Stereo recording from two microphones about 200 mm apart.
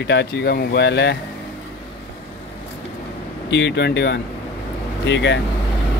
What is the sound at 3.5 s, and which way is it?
Speech, 60° left (ahead or behind).